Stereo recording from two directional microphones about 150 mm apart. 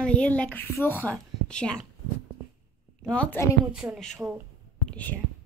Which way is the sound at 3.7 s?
Centre (ahead or behind).